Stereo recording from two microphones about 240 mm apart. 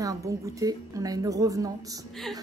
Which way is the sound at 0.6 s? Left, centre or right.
Centre.